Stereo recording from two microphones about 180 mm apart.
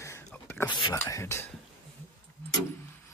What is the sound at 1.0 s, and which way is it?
Speech, 15° left (ahead or behind).